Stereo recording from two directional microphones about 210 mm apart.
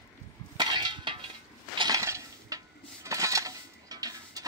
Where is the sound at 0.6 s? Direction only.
20° right (ahead or behind).